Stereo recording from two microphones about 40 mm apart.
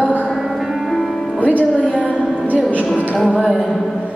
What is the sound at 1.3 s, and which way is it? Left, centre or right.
Music, left.